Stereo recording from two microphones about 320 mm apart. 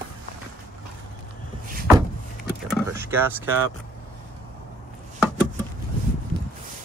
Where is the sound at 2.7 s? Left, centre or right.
Centre.